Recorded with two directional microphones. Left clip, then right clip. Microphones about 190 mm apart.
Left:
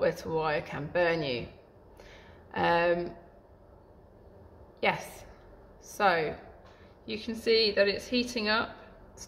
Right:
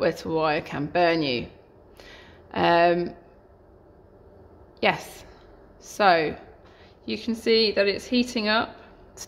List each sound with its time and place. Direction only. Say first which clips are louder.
0.0 s speech: right 5 dB; 40° right (ahead or behind)
2.0 s a sound: right 6 dB; 45° right (ahead or behind)
4.7 s a woman's voice: right 5 dB; 45° right (ahead or behind)